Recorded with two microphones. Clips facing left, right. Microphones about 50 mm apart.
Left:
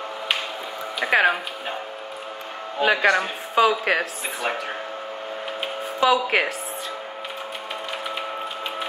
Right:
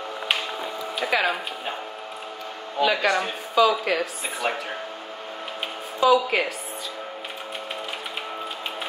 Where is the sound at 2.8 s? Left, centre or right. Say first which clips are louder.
Left 2 dB; left.